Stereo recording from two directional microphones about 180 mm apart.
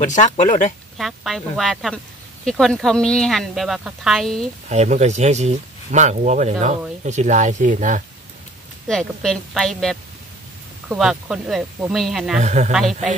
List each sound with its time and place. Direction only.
0.0 s speech: 40° left (ahead or behind)
0.9 s speech: centre (ahead or behind)
4.6 s speech: 40° right (ahead or behind)
8.8 s speech: 5° left (ahead or behind)
11.0 s speech: 5° right (ahead or behind)
12.4 s speech: 40° right (ahead or behind)
12.7 s speech: centre (ahead or behind)